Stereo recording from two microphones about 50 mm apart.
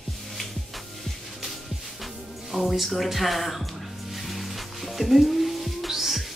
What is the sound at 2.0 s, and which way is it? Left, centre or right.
Music, centre.